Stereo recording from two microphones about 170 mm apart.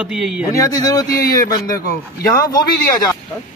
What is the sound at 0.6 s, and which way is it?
Speech, 20° left (ahead or behind).